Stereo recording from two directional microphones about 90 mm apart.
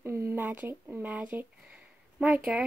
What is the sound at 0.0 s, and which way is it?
Speech, 30° right (ahead or behind).